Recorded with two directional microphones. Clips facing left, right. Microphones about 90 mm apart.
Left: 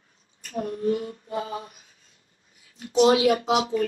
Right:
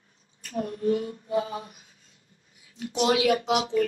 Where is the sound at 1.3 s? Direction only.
25° left (ahead or behind).